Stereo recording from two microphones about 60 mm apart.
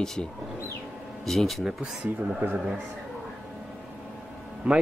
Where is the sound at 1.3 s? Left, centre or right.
Centre.